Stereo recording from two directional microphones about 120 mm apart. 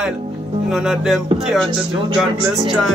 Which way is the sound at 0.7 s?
Centre (ahead or behind).